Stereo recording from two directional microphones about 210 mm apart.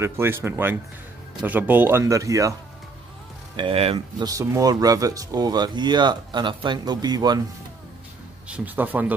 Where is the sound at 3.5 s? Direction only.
25° right (ahead or behind).